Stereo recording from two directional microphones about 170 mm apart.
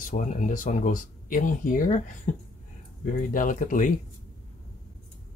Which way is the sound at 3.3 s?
50° left (ahead or behind).